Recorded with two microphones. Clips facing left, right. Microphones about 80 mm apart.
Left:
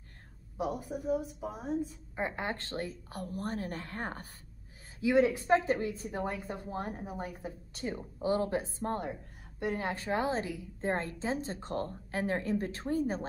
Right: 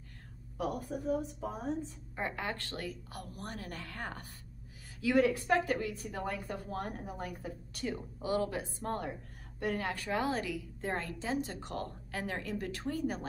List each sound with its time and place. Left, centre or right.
0.6 s a woman's voice: centre